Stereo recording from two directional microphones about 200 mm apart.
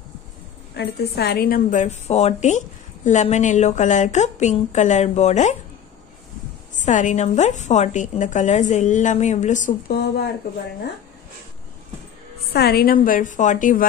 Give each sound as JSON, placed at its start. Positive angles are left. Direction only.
{"t": 0.7, "sound": "a woman's voice", "side_deg": 55}
{"t": 6.7, "sound": "a woman's voice", "side_deg": 40}
{"t": 12.5, "sound": "a woman's voice", "side_deg": 50}